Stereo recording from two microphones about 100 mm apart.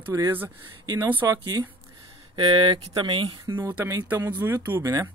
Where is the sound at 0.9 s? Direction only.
20° right (ahead or behind); by 1.7 s 40° right (ahead or behind).